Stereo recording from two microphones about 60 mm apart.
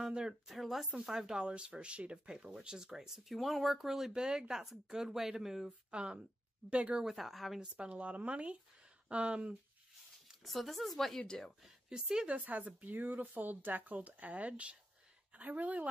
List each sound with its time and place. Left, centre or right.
0.0 s speech: centre
0.5 s speech: centre
5.9 s speech: centre
7.1 s speech: centre
7.7 s speech: right
10.4 s speech: centre
11.9 s speech: centre
12.4 s speech: right